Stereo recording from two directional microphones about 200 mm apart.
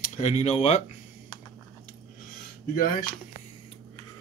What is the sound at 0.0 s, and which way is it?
Speech, 35° left (ahead or behind).